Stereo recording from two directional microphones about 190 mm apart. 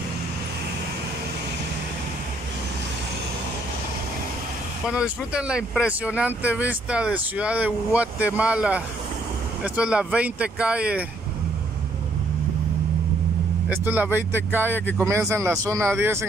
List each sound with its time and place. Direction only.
4.8 s speech: 5° right (ahead or behind)
13.7 s speech: 10° right (ahead or behind)